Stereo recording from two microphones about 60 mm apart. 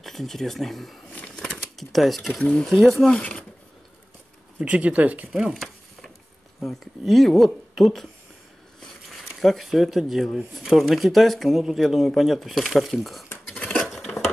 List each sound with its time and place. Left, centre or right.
0.0 s speech: centre
1.3 s a sound: centre
2.3 s speech: centre
2.6 s speech: centre
3.1 s speech: centre
4.6 s speech: right
5.5 s a sound: centre
6.6 s speech: centre
9.2 s speech: centre
13.5 s dishes: centre
13.8 s cutlery: centre